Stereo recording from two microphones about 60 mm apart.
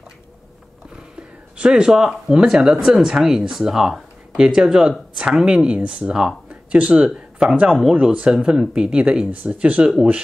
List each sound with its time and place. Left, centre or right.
0.9 s a sound: centre
2.3 s speech: centre
7.9 s speech: right